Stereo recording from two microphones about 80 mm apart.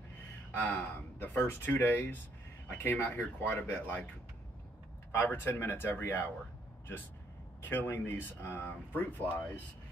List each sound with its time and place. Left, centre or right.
0.5 s speech: left
5.1 s speech: left
7.7 s speech: left